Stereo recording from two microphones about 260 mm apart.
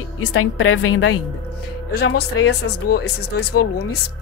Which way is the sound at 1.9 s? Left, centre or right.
Left.